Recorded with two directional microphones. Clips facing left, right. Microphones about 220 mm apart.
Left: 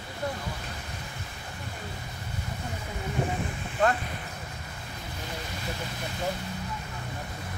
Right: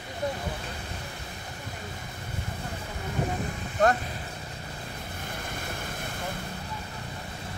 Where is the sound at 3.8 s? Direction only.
40° right (ahead or behind).